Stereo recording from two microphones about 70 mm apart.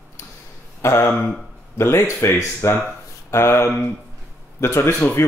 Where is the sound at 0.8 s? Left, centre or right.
Left.